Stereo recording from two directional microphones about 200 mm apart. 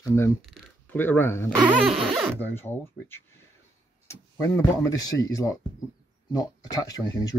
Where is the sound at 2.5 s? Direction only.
10° left (ahead or behind).